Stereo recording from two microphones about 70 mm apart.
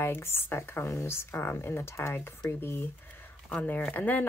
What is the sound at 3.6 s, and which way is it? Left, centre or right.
Speech, left.